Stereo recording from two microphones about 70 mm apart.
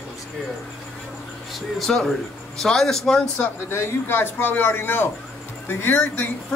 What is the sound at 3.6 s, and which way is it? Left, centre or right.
A man's voice, left.